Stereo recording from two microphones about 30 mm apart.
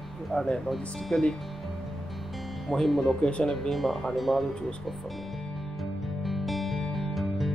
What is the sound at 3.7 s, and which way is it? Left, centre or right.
Speech, centre.